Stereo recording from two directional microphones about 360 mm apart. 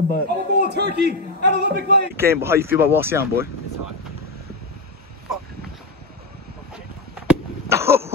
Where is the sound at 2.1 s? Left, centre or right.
Centre.